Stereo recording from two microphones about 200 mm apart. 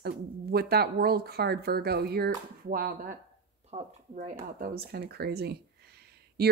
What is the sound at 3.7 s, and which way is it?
A woman's voice, 35° right (ahead or behind).